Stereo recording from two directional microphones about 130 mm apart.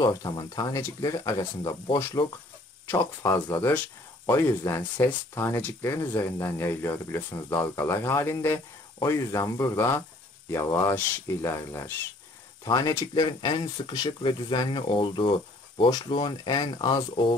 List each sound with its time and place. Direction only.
0.0 s speech: 30° left (ahead or behind)
2.9 s speech: 25° left (ahead or behind)
3.6 s speech: 15° left (ahead or behind); by 17.0 s 40° left (ahead or behind)